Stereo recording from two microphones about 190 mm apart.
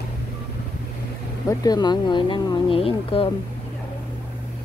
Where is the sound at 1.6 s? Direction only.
20° left (ahead or behind).